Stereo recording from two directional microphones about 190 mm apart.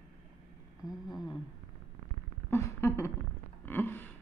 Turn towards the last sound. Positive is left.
turn(degrees=10)  # may be behind; listen again after turning